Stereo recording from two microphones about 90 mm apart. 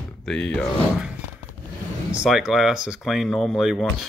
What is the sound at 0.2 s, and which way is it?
Speech, 5° left (ahead or behind).